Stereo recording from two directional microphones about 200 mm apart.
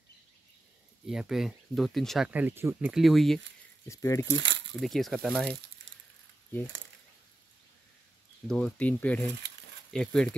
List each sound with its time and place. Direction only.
1.0 s speech: 5° right (ahead or behind)
3.8 s speech: 15° left (ahead or behind)
4.3 s speech: 65° right (ahead or behind)
4.7 s speech: centre (ahead or behind)
8.5 s speech: 5° left (ahead or behind)